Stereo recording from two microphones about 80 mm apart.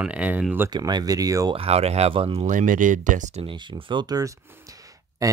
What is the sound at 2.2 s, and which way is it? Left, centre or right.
Speech, right.